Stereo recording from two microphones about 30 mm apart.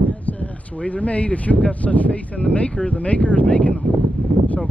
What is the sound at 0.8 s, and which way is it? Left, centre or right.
Speech, left.